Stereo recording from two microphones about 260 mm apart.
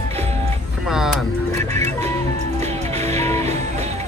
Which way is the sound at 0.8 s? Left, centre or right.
Centre.